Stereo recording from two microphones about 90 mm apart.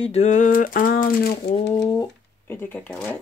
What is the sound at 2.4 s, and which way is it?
Speech, 25° left (ahead or behind).